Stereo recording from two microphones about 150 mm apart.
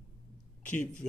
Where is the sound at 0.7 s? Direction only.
60° left (ahead or behind).